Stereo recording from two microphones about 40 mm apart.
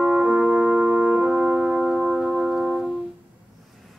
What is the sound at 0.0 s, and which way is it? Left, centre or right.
Music, centre.